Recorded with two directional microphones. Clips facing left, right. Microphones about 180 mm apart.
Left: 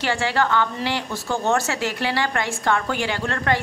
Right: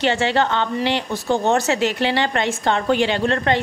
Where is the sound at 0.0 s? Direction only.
20° right (ahead or behind).